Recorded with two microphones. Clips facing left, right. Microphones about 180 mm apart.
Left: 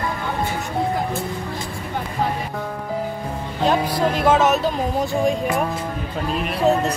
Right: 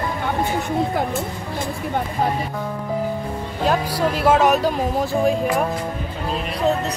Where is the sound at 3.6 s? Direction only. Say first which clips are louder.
Left 1 dB; 5° right (ahead or behind).